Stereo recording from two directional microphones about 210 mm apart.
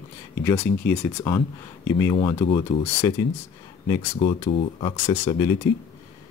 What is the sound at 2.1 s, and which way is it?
Speech, 25° left (ahead or behind).